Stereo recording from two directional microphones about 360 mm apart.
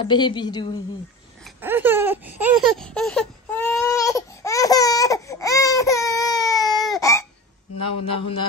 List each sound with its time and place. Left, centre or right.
0.0 s a woman's voice: centre
1.6 s a sound: centre
7.7 s a man's voice: left